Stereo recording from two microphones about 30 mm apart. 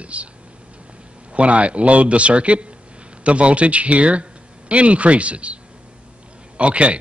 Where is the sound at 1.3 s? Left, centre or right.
Right.